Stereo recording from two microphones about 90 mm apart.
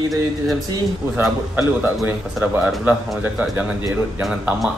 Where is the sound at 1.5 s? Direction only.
20° right (ahead or behind).